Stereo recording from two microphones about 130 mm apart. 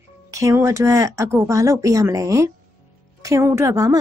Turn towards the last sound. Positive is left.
turn(degrees=-25)  # may be behind; listen again after turning